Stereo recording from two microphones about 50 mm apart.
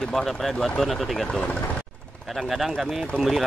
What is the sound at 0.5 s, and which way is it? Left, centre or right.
Speech, centre.